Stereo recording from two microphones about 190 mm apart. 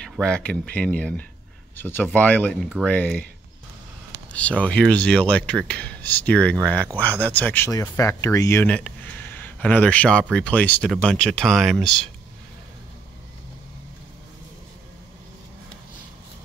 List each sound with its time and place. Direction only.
0.0 s speech: 5° left (ahead or behind)
4.3 s speech: 5° left (ahead or behind)